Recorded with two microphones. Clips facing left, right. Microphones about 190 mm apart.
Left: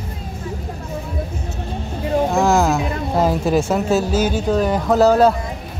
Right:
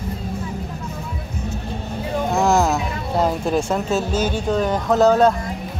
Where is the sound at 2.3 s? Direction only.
Centre (ahead or behind).